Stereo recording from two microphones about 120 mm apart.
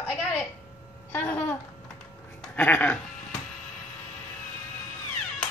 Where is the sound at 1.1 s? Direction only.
15° left (ahead or behind).